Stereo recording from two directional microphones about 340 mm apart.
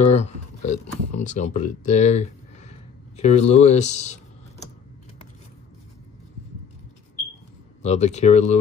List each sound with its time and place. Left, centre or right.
0.0 s a sound: centre
3.2 s speech: centre
7.8 s speech: centre